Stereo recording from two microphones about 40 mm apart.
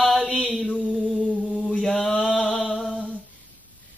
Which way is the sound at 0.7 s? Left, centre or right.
Left.